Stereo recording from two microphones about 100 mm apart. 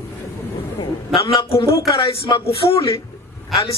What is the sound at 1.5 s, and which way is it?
Speech, 70° left (ahead or behind).